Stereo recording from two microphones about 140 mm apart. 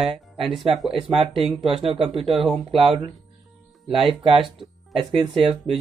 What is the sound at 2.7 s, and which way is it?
Speech, 40° right (ahead or behind).